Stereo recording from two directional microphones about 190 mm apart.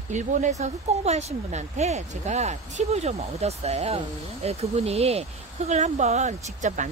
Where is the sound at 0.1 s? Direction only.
40° right (ahead or behind).